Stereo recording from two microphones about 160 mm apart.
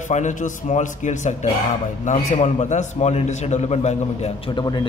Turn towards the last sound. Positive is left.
turn(degrees=30)  # may be behind; listen again after turning